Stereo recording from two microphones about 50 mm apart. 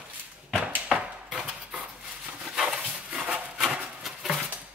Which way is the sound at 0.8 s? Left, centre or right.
Centre.